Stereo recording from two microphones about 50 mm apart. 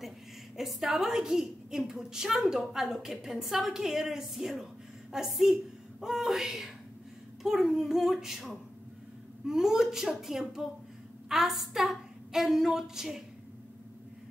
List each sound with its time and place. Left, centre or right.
0.6 s a woman's voice: centre